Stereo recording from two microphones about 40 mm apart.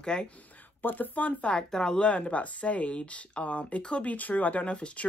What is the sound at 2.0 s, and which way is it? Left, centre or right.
Speech, left.